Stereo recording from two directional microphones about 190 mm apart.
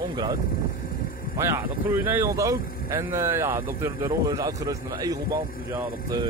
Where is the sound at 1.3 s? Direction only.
15° right (ahead or behind).